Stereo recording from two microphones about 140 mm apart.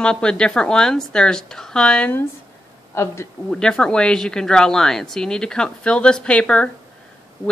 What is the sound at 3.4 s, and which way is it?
Speech, 5° left (ahead or behind).